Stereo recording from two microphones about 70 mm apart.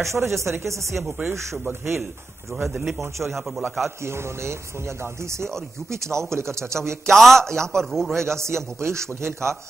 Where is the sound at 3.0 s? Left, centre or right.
Right.